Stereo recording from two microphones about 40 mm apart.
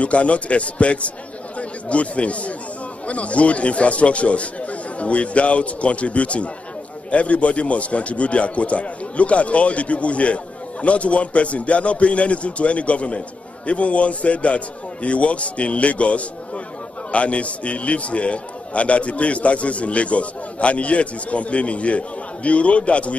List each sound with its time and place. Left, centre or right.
0.0 s a man's voice: left